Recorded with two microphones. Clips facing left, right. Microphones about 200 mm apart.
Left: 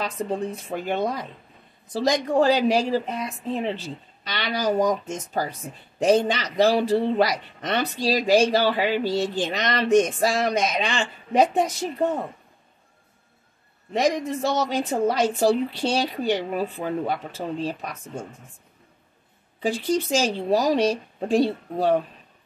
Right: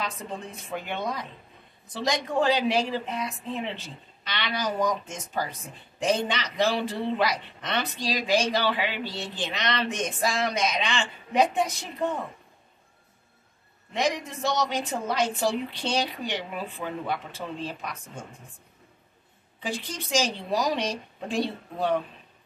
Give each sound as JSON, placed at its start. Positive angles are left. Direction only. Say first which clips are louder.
{"t": 0.0, "sound": "a man's voice", "louder": "left 7 dB", "side_deg": 40}
{"t": 13.9, "sound": "a man's voice", "louder": "left 5 dB", "side_deg": 40}
{"t": 19.6, "sound": "a man's voice", "louder": "left 10 dB", "side_deg": 40}